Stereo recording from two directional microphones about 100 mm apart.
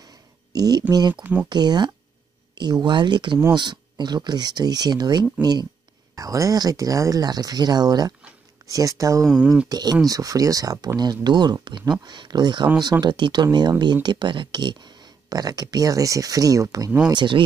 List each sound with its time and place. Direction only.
0.5 s speech: 40° right (ahead or behind)
1.1 s speech: 15° right (ahead or behind)
1.5 s speech: 45° right (ahead or behind)
9.2 s speech: 5° right (ahead or behind)
9.7 s speech: 40° right (ahead or behind)
17.1 s speech: 50° right (ahead or behind)